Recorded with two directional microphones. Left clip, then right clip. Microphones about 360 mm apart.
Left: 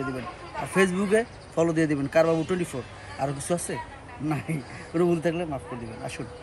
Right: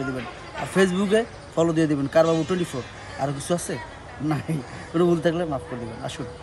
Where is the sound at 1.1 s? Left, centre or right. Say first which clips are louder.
Right 2 dB; centre.